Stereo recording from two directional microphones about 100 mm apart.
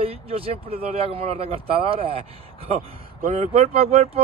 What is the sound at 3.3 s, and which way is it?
Speech, 90° right.